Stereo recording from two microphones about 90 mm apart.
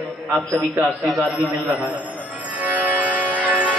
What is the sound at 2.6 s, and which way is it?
Music, 20° right (ahead or behind).